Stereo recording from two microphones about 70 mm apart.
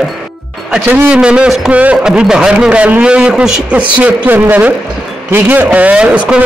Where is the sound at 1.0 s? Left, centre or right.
Centre.